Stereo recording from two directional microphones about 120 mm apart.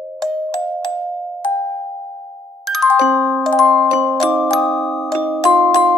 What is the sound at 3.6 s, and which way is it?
Glockenspiel, centre (ahead or behind).